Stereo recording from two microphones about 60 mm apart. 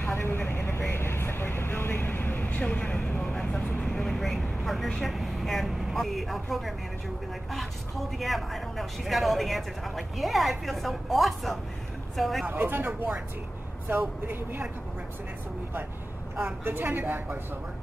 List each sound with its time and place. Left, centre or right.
0.0 s vehicle: left
2.6 s a sound: centre
3.3 s vehicle: centre
5.9 s speech: centre
8.2 s speech: centre
12.4 s a woman's voice: right
16.3 s a woman's voice: right